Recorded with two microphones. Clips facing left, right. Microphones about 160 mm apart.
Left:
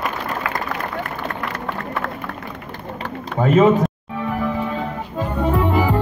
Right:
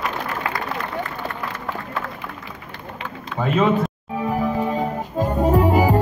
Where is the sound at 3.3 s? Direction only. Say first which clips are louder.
Left 5 dB; 45° left (ahead or behind).